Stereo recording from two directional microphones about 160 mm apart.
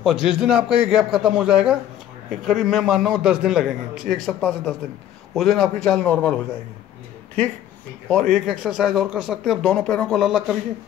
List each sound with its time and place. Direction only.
0.0 s speech: 5° right (ahead or behind)
8.1 s speech: centre (ahead or behind)